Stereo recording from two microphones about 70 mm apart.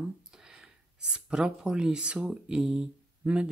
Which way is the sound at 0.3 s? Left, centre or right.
Centre.